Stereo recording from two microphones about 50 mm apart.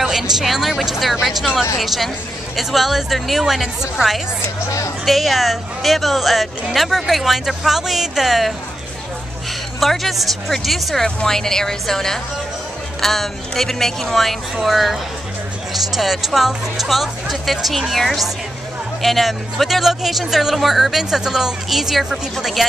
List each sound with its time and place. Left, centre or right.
0.0 s speech: centre
4.6 s speech: left
5.0 s speech: centre
9.8 s speech: centre
11.1 s a woman's voice: centre